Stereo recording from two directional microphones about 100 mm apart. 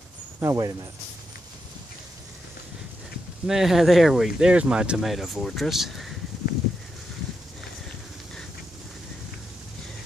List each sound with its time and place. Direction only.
0.4 s a man's voice: 35° right (ahead or behind)
3.4 s speech: 5° right (ahead or behind)